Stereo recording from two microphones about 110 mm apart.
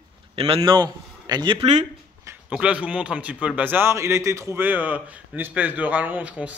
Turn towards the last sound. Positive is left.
turn(degrees=-10)  # may be behind; listen again after turning